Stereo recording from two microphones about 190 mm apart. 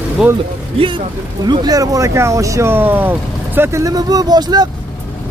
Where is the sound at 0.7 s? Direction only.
25° right (ahead or behind).